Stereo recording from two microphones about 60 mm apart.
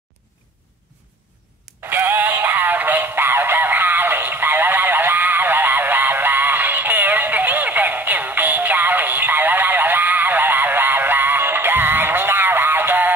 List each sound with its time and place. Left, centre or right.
1.9 s synthetic singing: right